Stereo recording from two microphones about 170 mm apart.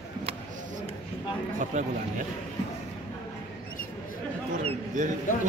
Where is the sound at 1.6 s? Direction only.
45° right (ahead or behind).